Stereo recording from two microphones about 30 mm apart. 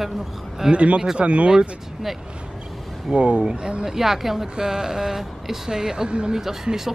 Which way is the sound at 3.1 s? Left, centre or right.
Right.